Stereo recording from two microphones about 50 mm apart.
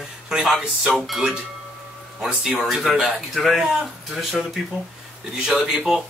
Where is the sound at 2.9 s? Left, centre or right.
Centre.